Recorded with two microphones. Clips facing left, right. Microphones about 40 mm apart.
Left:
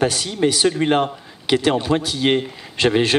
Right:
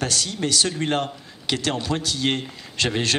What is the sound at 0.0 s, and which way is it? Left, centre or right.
A man's voice, centre.